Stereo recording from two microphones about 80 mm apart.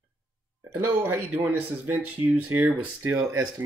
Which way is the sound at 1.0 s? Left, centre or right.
Right.